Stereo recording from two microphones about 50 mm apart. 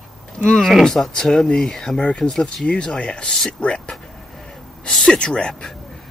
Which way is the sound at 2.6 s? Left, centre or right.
Centre.